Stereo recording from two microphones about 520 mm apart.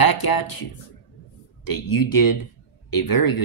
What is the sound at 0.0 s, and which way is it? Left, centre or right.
Speech, left.